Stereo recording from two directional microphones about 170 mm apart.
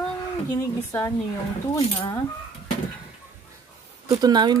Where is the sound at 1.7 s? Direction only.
20° left (ahead or behind).